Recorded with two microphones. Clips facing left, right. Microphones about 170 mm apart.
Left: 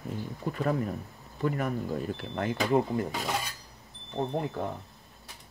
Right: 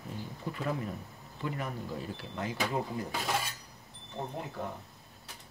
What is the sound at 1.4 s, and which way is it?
Speech, 50° left (ahead or behind).